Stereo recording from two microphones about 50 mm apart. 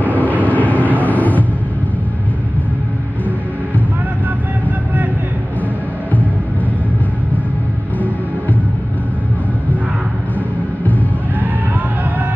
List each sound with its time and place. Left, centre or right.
0.0 s vehicle: left